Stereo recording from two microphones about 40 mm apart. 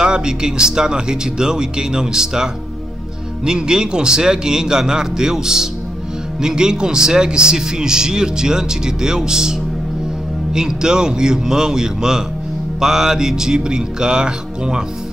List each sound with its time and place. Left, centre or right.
0.0 s speech: centre